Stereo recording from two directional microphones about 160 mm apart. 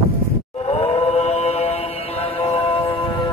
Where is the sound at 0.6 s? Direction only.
40° left (ahead or behind).